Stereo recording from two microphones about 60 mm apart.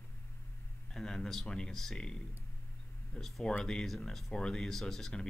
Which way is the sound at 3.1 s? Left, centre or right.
Centre.